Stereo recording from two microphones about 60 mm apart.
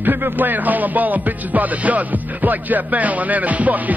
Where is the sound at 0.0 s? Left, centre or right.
Right.